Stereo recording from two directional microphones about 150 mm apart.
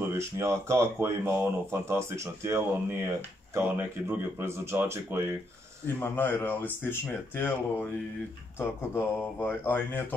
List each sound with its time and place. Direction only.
0.0 s speech: 15° right (ahead or behind)
5.9 s speech: 15° left (ahead or behind)